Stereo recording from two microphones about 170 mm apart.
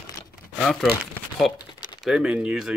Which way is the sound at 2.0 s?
Centre (ahead or behind).